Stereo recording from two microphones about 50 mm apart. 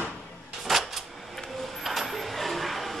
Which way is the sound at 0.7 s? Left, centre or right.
Centre.